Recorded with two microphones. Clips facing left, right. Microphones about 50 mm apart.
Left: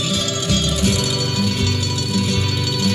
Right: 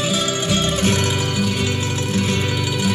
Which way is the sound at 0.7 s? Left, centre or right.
Right.